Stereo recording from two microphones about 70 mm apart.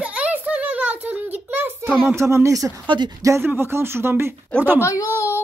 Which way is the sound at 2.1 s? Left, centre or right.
Right.